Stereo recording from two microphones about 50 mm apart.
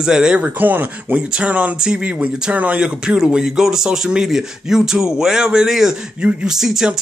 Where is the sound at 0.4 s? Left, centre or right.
Right.